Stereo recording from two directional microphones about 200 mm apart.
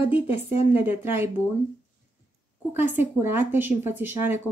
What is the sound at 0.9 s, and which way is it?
Speech, 10° right (ahead or behind).